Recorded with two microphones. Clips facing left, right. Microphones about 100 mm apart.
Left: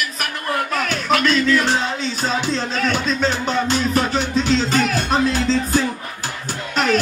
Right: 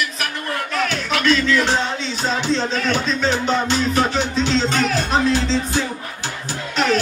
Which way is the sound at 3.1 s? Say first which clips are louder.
Right 1 dB; 40° left (ahead or behind).